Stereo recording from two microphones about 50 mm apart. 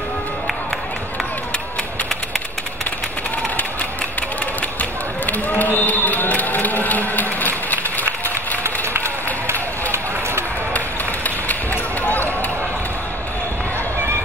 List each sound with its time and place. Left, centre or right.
5.6 s a sound: left
8.6 s run: right
11.2 s basketball bounce: left